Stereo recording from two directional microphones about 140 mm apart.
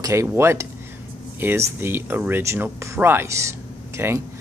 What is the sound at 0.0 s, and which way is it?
Speech, 20° right (ahead or behind).